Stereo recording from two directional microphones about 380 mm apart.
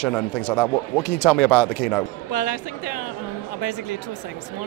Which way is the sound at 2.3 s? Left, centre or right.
Left.